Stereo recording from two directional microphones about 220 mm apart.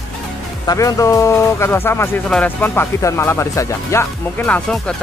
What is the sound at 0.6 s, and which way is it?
Speech, 15° left (ahead or behind).